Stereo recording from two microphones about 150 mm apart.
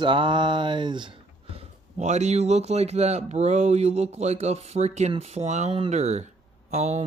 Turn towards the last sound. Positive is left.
turn(degrees=-50)  # may be behind; listen again after turning